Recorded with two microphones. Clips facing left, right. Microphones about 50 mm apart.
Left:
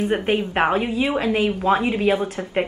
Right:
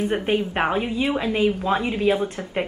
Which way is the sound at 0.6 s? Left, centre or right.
Centre.